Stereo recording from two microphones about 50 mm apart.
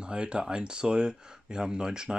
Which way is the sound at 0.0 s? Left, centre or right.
Centre.